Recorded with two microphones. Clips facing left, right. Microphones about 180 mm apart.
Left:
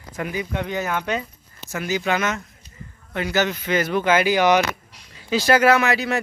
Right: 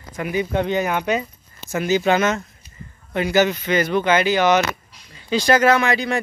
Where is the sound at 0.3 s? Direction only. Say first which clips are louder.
Right 8 dB; 30° right (ahead or behind).